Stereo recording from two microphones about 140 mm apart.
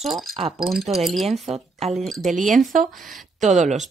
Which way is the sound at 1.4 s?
50° right (ahead or behind).